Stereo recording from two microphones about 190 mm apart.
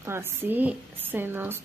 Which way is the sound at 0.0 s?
10° right (ahead or behind).